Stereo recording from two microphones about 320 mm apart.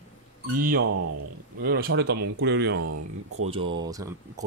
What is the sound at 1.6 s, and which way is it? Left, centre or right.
Speech, right.